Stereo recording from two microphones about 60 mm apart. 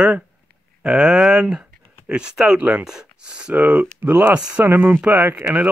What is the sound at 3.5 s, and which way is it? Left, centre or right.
Speech, right.